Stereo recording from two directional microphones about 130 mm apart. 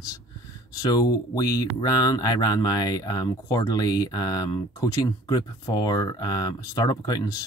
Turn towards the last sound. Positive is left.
turn(degrees=30)  # may be behind; listen again after turning